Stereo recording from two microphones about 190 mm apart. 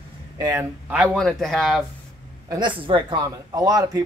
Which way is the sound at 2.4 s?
25° right (ahead or behind).